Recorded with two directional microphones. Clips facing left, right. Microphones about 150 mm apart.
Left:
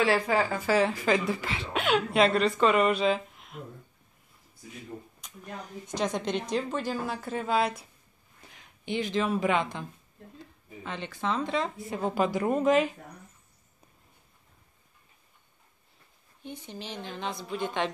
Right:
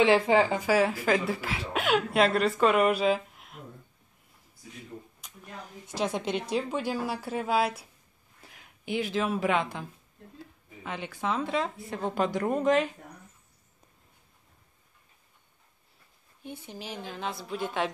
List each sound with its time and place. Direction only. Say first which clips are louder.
0.0 s speech: right 4 dB; 25° right (ahead or behind)
0.7 s a woman's voice: even; 5° right (ahead or behind)
5.2 s a sound: left 2 dB; centre (ahead or behind)
5.9 s a woman's voice: even; 5° right (ahead or behind)
16.4 s a woman's voice: even; 5° right (ahead or behind)